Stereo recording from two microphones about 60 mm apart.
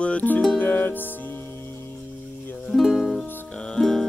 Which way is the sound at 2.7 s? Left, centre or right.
Centre.